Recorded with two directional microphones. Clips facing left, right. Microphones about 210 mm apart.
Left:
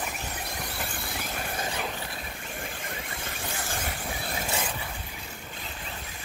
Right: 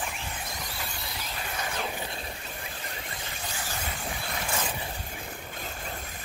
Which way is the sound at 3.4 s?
50° left (ahead or behind).